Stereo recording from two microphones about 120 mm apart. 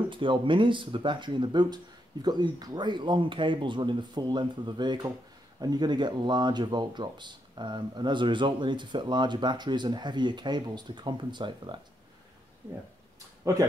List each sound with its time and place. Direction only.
0.1 s speech: 45° right (ahead or behind)
13.4 s speech: 25° right (ahead or behind)